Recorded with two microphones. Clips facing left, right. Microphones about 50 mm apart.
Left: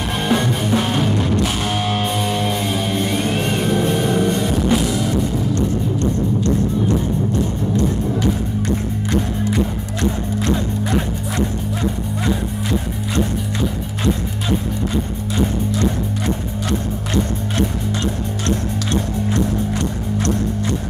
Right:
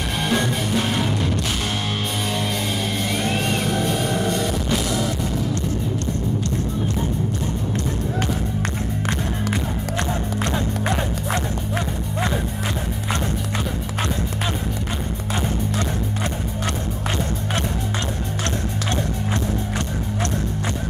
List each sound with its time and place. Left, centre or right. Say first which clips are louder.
0.3 s music: left 4 dB; left
3.2 s music: left 3 dB; left
7.7 s music: left 5 dB; right